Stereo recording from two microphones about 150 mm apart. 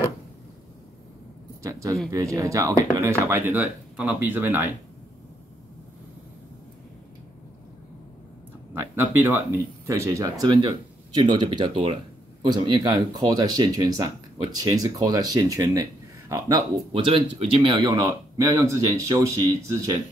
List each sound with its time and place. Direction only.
1.6 s speech: 20° right (ahead or behind)
8.7 s speech: 15° right (ahead or behind)
16.9 s speech: 35° right (ahead or behind)
17.7 s speech: 25° right (ahead or behind)